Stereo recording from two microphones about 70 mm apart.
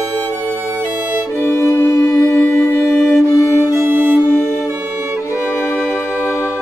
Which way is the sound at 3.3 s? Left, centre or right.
Left.